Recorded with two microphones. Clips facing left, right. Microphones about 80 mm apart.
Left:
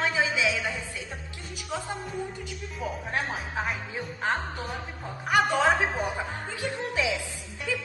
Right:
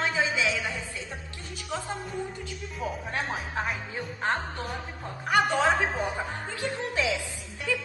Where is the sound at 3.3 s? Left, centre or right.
Centre.